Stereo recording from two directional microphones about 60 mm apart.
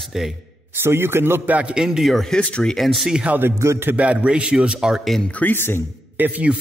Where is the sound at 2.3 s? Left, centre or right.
Centre.